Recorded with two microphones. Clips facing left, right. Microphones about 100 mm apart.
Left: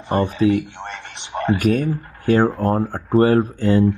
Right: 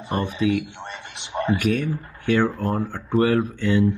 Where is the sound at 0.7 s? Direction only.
55° left (ahead or behind).